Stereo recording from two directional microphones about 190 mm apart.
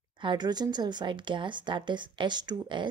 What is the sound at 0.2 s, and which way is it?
Speech, 25° right (ahead or behind).